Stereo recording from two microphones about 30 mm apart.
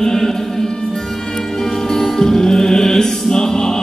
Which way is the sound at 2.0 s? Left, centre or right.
Centre.